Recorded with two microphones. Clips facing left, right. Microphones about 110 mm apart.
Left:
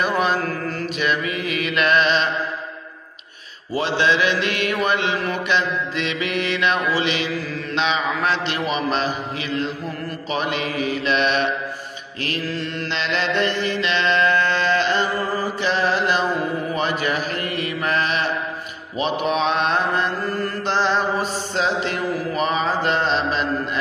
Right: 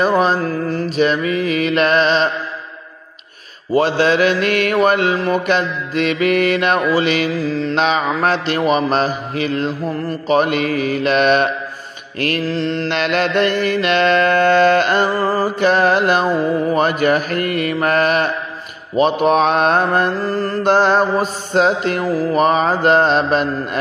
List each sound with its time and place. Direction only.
0.0 s mantra: 35° right (ahead or behind)
3.7 s music: 50° right (ahead or behind)
12.2 s mantra: 55° right (ahead or behind)
12.6 s mantra: 40° right (ahead or behind)
12.9 s music: 55° right (ahead or behind)